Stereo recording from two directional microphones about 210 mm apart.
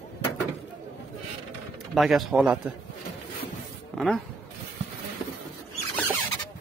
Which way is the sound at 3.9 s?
5° left (ahead or behind).